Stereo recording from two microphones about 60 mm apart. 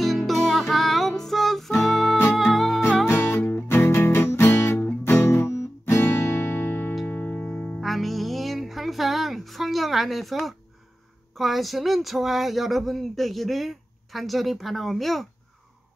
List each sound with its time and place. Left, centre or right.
0.3 s music: centre
3.1 s music: left
4.7 s music: left
5.1 s music: left
7.8 s music: centre
11.3 s speech: centre